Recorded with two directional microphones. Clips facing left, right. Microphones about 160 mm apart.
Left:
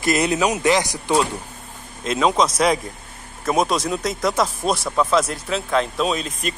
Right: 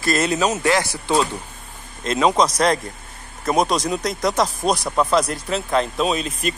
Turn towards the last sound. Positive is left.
turn(degrees=0)  # may be behind; listen again after turning